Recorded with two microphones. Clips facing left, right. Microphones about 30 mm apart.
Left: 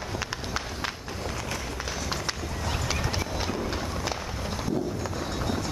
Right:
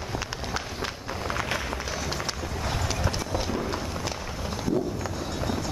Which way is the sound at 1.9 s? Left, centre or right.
Centre.